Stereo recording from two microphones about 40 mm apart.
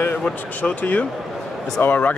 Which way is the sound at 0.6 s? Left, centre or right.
Left.